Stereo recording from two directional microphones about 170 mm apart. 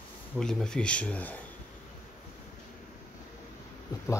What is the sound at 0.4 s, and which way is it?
Speech, 5° left (ahead or behind).